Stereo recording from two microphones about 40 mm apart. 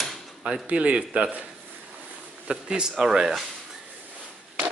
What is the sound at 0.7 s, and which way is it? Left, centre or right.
Speech, right.